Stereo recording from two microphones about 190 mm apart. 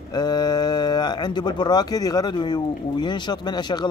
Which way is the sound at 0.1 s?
20° left (ahead or behind).